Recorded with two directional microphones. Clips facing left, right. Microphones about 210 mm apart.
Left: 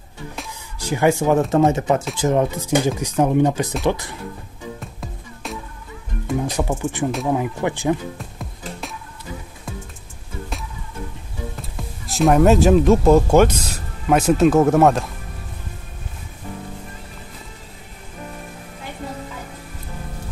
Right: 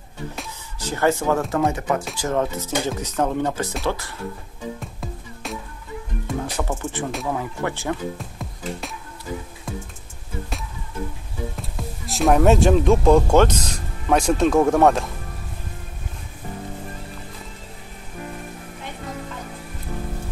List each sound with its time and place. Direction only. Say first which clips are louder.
0.7 s speech: left 3 dB; 10° left (ahead or behind)
4.7 s music: right 1 dB; centre (ahead or behind)
6.4 s speech: left 4 dB; 15° left (ahead or behind)
8.2 s music: even; centre (ahead or behind)
11.7 s speech: even; centre (ahead or behind)